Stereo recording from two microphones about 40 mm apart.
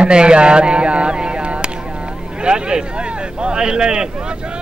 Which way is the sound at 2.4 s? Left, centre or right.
Right.